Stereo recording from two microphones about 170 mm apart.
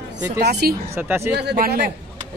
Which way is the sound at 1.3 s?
70° right (ahead or behind).